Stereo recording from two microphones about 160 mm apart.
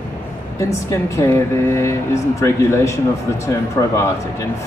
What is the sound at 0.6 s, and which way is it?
Speech, 20° left (ahead or behind).